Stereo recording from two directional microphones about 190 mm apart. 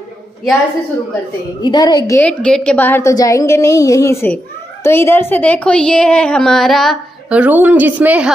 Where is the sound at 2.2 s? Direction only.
5° left (ahead or behind).